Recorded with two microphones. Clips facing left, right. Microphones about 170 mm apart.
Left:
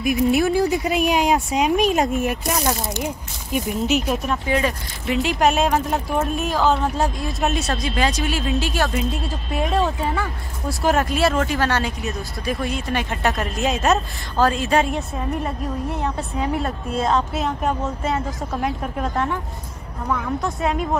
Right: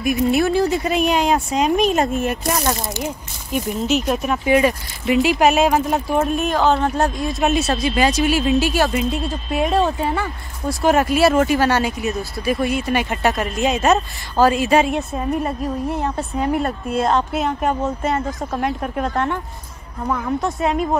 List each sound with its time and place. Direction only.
0.0 s speech: 10° left (ahead or behind)
4.2 s speech: 10° right (ahead or behind)
20.1 s a woman's voice: 20° right (ahead or behind)
20.4 s speech: centre (ahead or behind)